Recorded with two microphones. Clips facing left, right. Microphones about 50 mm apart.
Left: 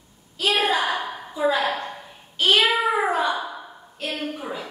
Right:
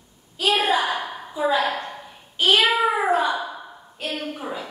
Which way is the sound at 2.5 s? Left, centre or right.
Right.